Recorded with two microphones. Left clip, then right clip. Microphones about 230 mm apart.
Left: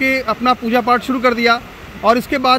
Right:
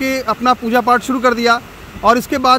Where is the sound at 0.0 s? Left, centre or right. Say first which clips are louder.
Even; centre.